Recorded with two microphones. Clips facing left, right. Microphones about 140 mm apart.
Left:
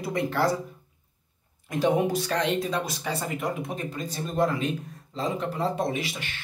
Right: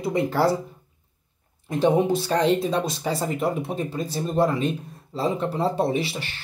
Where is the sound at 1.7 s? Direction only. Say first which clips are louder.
Right 4 dB; 25° right (ahead or behind).